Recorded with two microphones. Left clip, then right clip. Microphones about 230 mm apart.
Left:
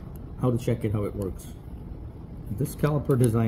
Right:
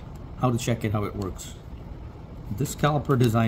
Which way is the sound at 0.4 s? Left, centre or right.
Right.